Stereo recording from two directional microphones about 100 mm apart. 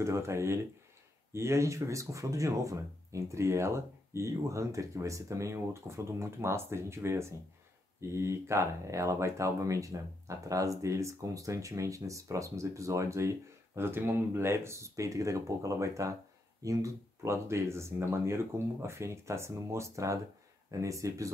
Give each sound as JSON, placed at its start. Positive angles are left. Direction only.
{"t": 0.0, "sound": "speech", "side_deg": -30}